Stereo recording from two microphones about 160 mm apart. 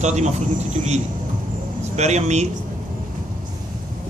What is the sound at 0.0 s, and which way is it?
A man's voice, 45° right (ahead or behind).